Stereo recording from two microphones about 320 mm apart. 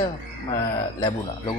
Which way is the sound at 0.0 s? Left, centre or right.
Centre.